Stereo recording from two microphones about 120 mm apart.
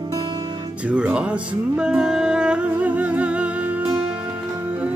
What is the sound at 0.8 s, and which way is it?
Music, 10° right (ahead or behind).